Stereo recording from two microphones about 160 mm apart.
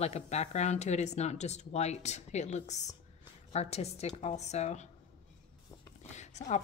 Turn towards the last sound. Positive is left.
turn(degrees=45)  # may be behind; listen again after turning